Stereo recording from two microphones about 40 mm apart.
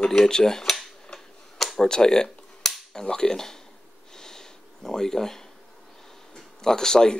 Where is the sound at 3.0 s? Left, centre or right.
Centre.